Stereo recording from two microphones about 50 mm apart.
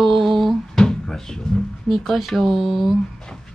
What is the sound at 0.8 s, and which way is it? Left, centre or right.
Drawer open or close, centre.